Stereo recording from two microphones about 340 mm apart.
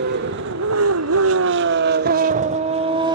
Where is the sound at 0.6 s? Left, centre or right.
Right.